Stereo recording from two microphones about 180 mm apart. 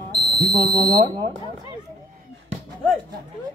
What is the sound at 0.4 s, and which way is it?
Speech, 20° right (ahead or behind).